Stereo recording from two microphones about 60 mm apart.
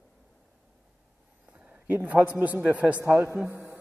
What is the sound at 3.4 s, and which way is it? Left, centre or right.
Mantra, centre.